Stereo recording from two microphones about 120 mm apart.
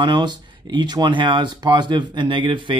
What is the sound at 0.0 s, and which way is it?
Speech, 40° right (ahead or behind).